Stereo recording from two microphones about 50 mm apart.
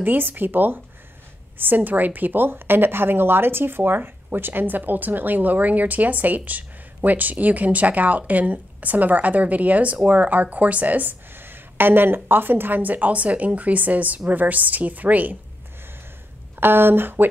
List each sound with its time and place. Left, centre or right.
0.0 s a woman's voice: right
1.9 s a woman's voice: right
11.3 s a woman's voice: right
16.5 s speech: right